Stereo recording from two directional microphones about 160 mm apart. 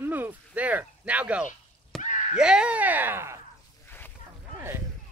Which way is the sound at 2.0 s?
50° left (ahead or behind).